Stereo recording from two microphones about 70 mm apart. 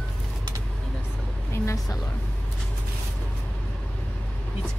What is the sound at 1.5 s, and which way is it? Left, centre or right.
Speech, left.